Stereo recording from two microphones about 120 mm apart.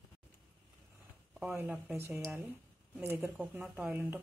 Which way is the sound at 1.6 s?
15° right (ahead or behind).